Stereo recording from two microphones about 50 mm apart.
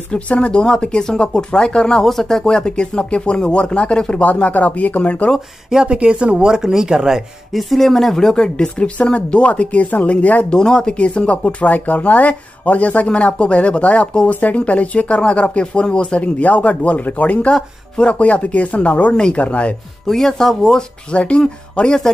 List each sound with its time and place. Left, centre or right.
0.1 s speech: left
4.2 s speech: left
5.7 s speech: centre
7.7 s speech: centre; by 10.6 s left
10.6 s speech: centre
20.1 s speech: centre
21.1 s speech: left